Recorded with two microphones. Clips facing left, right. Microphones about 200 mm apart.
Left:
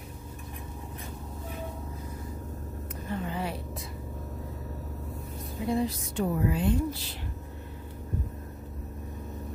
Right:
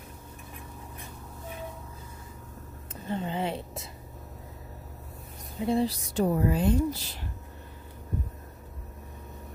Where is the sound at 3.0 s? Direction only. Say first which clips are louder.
Right 3 dB; 30° right (ahead or behind).